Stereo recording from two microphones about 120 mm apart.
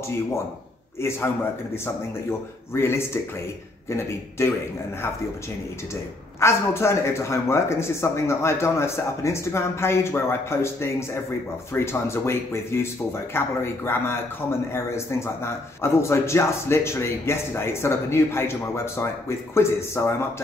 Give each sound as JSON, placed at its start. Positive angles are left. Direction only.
{"t": 2.7, "sound": "a man's voice", "side_deg": 20}
{"t": 6.4, "sound": "a man's voice", "side_deg": 20}